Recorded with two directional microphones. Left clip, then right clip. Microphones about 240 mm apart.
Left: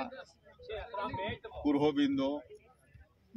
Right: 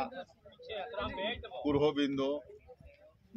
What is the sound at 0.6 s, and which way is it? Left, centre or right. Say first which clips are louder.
Music: even; right.